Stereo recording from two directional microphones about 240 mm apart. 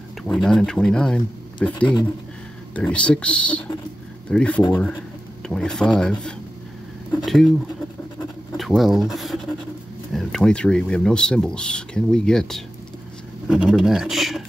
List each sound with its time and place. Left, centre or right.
0.2 s speech: centre
8.5 s speech: centre